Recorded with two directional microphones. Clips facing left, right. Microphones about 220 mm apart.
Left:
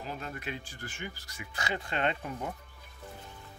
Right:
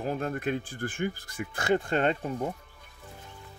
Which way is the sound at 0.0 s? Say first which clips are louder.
Right 9 dB; 50° right (ahead or behind).